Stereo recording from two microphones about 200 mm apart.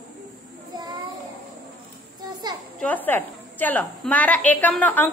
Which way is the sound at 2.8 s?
10° left (ahead or behind).